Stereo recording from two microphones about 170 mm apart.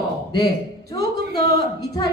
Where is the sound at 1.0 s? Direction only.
65° right (ahead or behind).